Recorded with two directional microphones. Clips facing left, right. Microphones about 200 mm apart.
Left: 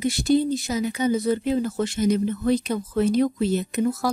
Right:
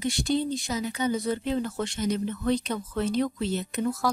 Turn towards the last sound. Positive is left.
turn(degrees=10)  # may be behind; listen again after turning